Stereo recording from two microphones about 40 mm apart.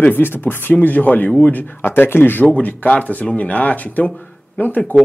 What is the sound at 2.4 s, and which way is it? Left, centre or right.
Speech, left.